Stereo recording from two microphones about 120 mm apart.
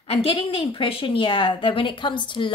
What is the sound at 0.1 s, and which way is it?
A woman's voice, 55° left (ahead or behind).